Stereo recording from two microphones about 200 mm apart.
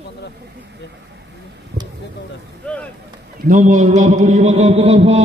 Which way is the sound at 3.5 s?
40° right (ahead or behind).